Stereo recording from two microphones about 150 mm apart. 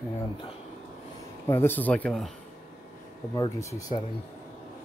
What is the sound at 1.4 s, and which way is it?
Speech, 15° left (ahead or behind).